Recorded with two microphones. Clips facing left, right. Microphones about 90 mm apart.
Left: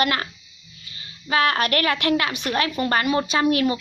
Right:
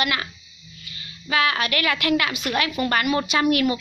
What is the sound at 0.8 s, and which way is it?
A woman's voice, 30° left (ahead or behind).